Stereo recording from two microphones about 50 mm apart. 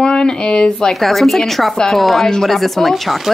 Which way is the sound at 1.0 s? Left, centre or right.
Centre.